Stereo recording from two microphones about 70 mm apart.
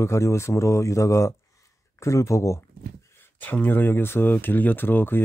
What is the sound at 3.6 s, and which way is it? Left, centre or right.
Speech, left.